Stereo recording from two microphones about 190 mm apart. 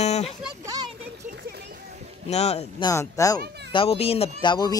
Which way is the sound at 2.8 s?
15° left (ahead or behind).